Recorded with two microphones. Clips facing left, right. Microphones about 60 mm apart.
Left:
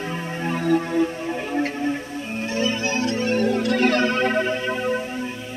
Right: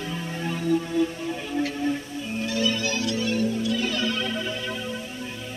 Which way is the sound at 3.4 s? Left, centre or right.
Left.